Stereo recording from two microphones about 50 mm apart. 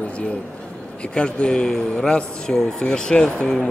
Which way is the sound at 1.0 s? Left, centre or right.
Centre.